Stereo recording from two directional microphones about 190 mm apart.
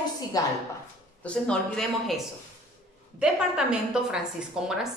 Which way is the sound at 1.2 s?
5° left (ahead or behind).